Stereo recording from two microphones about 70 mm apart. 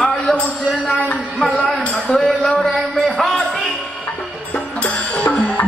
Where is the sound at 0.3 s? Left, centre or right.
Left.